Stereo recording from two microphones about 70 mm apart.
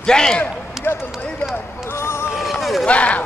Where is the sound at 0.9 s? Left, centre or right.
Left.